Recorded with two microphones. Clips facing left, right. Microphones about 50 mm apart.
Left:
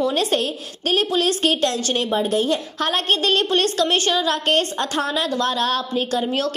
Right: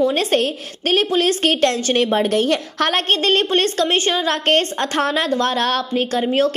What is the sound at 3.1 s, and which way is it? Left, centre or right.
A woman's voice, right.